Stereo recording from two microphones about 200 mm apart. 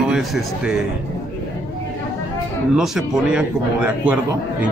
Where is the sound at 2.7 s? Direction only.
Centre (ahead or behind).